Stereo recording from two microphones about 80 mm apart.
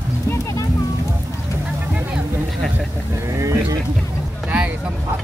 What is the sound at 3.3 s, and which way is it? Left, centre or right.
Boat, right.